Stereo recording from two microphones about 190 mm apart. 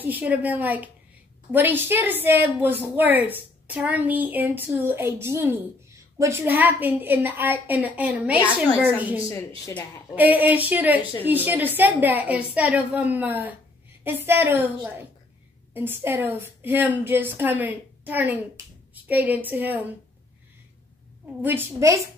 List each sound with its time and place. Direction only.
0.0 s a woman's voice: 10° right (ahead or behind)
9.7 s a woman's voice: 15° left (ahead or behind)
10.1 s a woman's voice: 10° right (ahead or behind)
15.7 s a woman's voice: 10° right (ahead or behind)
21.4 s a woman's voice: 10° right (ahead or behind)